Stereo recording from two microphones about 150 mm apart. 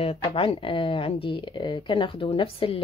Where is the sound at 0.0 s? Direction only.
40° left (ahead or behind).